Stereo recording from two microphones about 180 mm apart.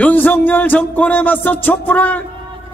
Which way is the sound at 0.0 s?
10° left (ahead or behind).